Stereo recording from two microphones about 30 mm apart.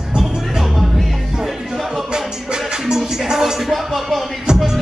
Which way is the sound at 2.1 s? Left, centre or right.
Right.